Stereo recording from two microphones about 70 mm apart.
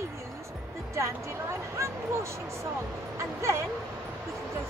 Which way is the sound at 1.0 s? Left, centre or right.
Right.